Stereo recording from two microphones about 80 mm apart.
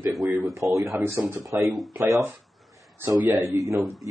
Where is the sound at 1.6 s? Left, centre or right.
Centre.